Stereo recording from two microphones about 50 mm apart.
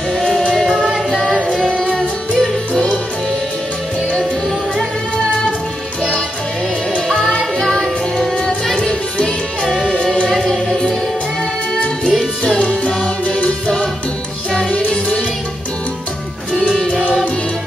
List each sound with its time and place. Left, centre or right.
0.1 s music: centre
0.7 s music: centre
1.7 s music: centre
7.1 s music: centre
12.0 s music: centre
12.5 s music: centre
14.5 s music: centre